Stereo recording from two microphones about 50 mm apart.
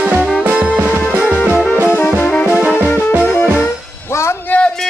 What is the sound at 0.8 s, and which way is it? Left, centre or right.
Music, right.